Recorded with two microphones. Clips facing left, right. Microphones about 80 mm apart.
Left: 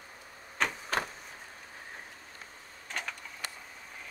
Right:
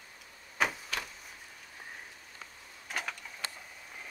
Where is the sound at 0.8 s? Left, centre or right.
Left.